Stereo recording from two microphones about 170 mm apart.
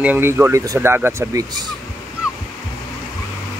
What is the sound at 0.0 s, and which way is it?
Speech, 10° right (ahead or behind).